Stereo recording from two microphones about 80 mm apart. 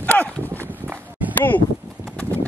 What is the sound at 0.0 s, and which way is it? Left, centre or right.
Horse, left.